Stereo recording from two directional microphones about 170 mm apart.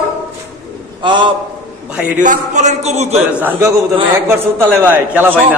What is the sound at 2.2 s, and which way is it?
Speech, 45° right (ahead or behind).